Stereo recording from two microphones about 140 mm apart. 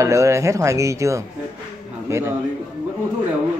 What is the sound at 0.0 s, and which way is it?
A man's voice, 20° right (ahead or behind).